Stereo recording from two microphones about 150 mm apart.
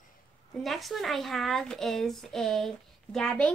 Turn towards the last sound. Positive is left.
turn(degrees=5)  # may be behind; listen again after turning